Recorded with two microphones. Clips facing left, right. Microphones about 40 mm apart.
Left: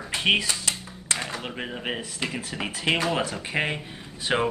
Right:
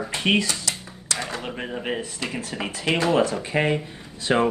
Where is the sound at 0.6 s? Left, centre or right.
Left.